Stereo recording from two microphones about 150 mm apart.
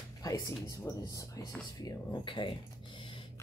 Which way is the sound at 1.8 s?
30° left (ahead or behind).